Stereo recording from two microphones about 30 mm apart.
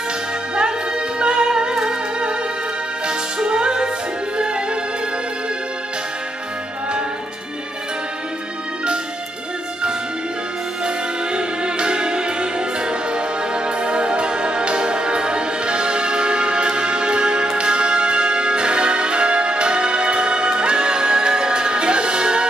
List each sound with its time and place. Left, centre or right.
0.6 s music: right
11.3 s music: right